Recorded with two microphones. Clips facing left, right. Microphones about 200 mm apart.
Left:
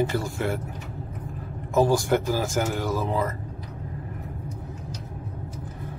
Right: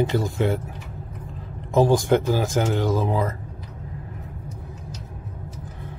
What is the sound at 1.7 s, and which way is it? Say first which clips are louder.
Speech: right 3 dB; 20° right (ahead or behind).